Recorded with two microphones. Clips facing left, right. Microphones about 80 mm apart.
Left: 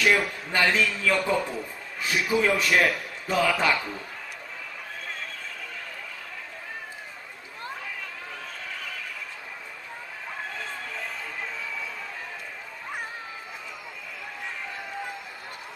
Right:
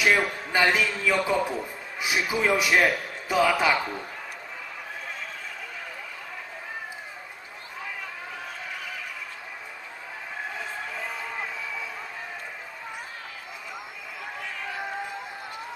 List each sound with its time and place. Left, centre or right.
0.0 s a man's voice: centre